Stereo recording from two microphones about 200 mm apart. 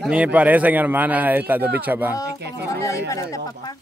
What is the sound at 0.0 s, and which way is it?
A man's voice, 5° right (ahead or behind).